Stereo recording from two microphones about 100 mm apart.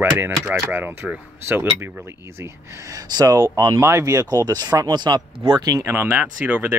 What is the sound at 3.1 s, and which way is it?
Speech, 40° right (ahead or behind).